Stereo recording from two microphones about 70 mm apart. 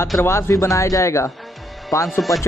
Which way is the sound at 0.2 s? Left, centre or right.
Left.